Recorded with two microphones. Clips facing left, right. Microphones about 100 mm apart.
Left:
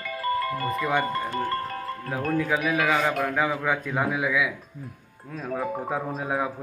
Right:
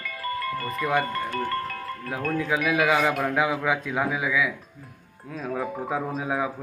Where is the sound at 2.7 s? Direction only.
15° right (ahead or behind).